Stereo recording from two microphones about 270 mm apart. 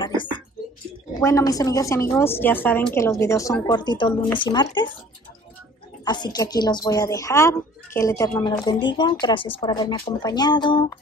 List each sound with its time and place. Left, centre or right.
0.0 s a sound: centre
1.2 s speech: centre
6.0 s speech: centre